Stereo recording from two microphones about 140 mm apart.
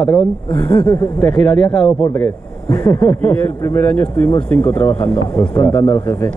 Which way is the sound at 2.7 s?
25° left (ahead or behind).